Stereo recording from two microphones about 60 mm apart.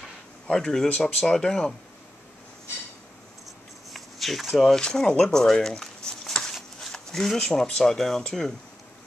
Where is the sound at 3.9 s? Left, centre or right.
Centre.